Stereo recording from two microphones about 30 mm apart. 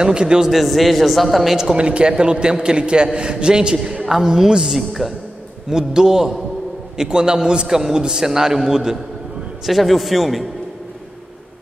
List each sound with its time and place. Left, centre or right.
0.0 s a man's voice: right
0.5 s a man's voice: centre
1.8 s a man's voice: right
4.1 s a man's voice: centre
5.7 s a man's voice: right
7.6 s a man's voice: centre
9.7 s a man's voice: centre